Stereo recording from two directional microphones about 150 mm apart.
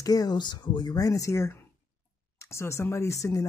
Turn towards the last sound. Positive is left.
turn(degrees=20)  # may be behind; listen again after turning